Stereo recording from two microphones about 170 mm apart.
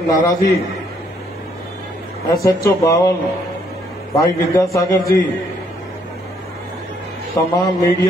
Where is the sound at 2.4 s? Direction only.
20° left (ahead or behind).